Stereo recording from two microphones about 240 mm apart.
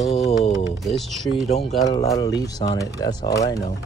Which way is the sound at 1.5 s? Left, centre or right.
Left.